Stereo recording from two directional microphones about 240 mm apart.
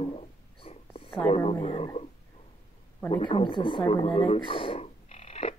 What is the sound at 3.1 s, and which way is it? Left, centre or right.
Speech, left.